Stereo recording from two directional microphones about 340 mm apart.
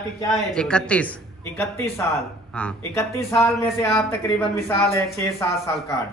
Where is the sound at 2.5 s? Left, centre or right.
Centre.